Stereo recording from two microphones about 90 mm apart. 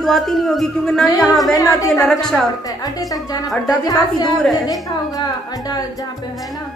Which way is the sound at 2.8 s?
40° left (ahead or behind).